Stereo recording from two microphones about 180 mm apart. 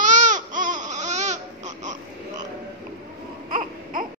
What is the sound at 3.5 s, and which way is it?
Baby cry, 50° right (ahead or behind).